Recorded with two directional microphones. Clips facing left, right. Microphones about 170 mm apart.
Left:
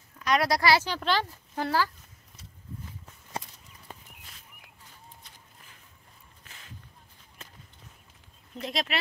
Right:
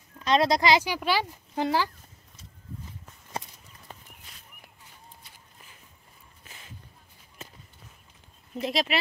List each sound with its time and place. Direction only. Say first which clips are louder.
0.2 s speech: right 3 dB; 25° right (ahead or behind)
8.5 s speech: right 4 dB; 5° right (ahead or behind)